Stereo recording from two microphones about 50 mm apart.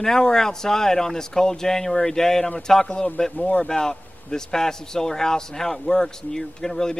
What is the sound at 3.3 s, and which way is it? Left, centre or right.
Speech, left.